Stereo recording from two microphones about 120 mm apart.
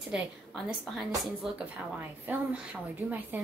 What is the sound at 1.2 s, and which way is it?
Speech, 10° right (ahead or behind).